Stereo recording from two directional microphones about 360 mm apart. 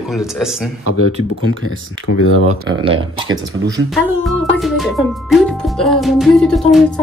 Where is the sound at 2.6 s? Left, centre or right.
Centre.